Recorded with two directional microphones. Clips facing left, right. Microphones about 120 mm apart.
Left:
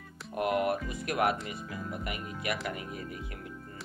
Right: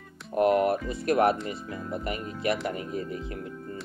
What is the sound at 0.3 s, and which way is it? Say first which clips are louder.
Speech: right 6 dB; 35° right (ahead or behind).